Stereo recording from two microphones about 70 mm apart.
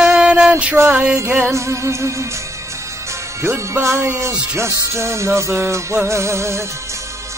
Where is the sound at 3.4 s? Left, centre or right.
Right.